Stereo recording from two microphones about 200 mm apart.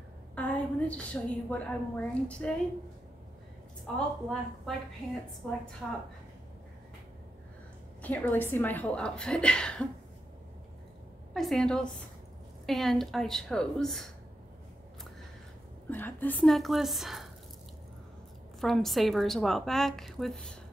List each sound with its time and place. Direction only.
0.4 s a woman's voice: 5° left (ahead or behind)
3.8 s a woman's voice: centre (ahead or behind)
8.0 s a woman's voice: 10° left (ahead or behind)
11.3 s a woman's voice: centre (ahead or behind)
15.9 s a woman's voice: 10° left (ahead or behind)
18.6 s a woman's voice: centre (ahead or behind)